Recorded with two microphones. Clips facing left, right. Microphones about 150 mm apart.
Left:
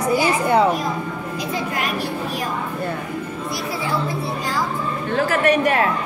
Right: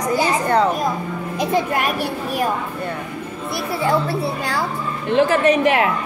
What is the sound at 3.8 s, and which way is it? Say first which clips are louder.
Speech: right 6 dB; 70° right (ahead or behind).